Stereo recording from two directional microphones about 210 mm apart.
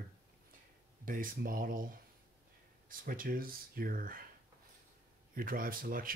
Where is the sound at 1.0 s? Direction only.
40° right (ahead or behind).